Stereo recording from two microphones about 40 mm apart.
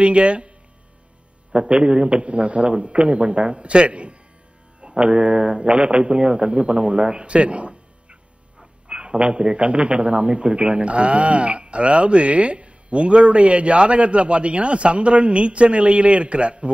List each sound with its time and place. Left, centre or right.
0.0 s speech: right
1.5 s a man's voice: right